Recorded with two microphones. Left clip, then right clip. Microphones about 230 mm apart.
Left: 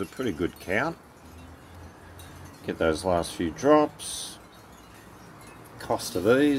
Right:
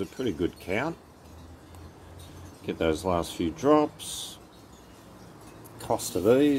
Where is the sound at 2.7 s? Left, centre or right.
Centre.